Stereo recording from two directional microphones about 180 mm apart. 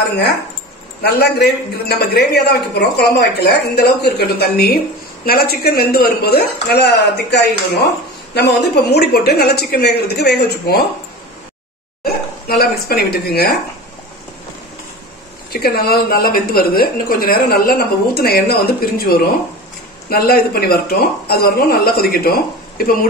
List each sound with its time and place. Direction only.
1.0 s speech: 65° left (ahead or behind)
12.0 s speech: 55° left (ahead or behind)
15.5 s speech: 60° left (ahead or behind)